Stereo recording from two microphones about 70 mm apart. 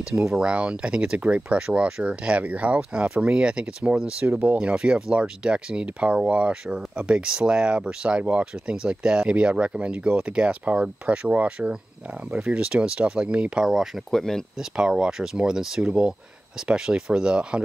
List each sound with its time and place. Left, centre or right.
0.0 s speech: centre